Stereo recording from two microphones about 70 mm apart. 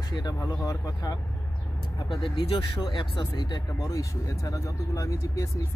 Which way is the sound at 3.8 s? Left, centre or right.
Left.